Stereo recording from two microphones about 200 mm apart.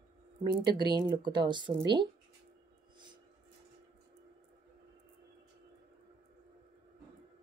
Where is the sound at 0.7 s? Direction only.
20° right (ahead or behind).